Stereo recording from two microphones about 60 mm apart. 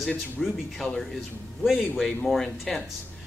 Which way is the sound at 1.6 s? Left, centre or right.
Centre.